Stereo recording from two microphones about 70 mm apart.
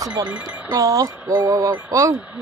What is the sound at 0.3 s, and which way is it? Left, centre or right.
Speech, centre.